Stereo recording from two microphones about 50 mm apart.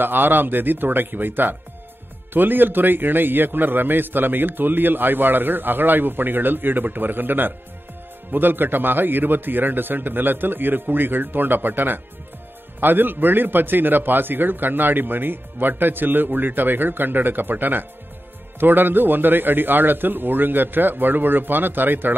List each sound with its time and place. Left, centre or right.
0.0 s a man's voice: right